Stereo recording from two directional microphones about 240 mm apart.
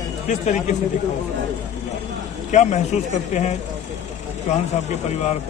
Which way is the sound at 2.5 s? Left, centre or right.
Left.